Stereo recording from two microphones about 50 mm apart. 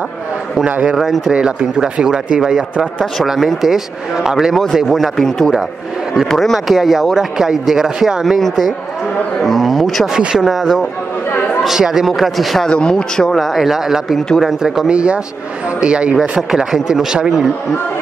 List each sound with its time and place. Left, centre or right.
0.9 s speech: centre
1.3 s speech: centre
5.1 s speech: centre
10.1 s speech: centre
12.6 s speech: centre
13.4 s speech: centre
14.9 s a man's voice: centre
16.2 s speech: centre